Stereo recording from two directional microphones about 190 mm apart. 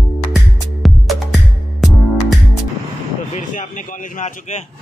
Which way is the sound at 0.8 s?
Centre (ahead or behind).